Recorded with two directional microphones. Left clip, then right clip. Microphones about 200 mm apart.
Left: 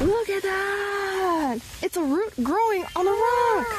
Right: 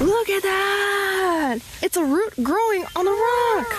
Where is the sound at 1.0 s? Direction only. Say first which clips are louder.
Right 3 dB; 10° right (ahead or behind).